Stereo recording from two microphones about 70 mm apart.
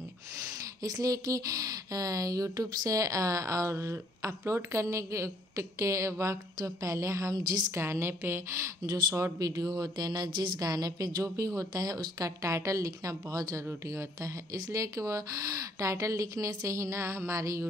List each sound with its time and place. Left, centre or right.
0.8 s speech: right
7.7 s a woman's voice: right
9.4 s speech: right
11.2 s speech: right